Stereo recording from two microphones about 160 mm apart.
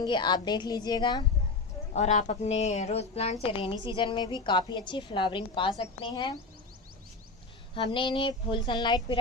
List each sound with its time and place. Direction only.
0.0 s speech: 30° left (ahead or behind)
2.0 s a woman's voice: 45° left (ahead or behind); by 6.3 s 30° left (ahead or behind)
7.7 s speech: 30° left (ahead or behind)